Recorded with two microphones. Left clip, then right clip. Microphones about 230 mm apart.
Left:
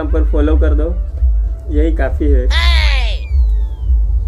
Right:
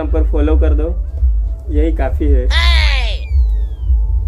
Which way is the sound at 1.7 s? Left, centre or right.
Centre.